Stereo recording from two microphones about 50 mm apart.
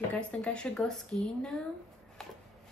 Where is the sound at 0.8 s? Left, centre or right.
Centre.